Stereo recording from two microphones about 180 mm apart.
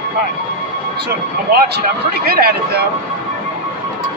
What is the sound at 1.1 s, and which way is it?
Speech, 60° right (ahead or behind).